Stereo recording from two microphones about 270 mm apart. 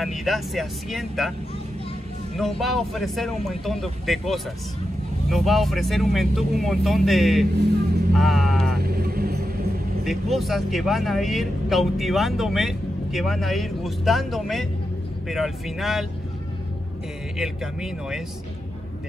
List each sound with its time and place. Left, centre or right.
0.0 s speech: centre
2.3 s speech: centre
8.7 s vehicle: right
10.3 s speech: centre
17.4 s speech: centre